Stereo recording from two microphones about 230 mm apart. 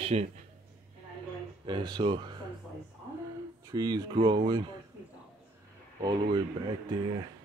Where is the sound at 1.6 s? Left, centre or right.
Centre.